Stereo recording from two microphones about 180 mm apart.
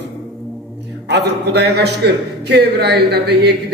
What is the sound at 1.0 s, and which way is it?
A man's voice, 65° right (ahead or behind).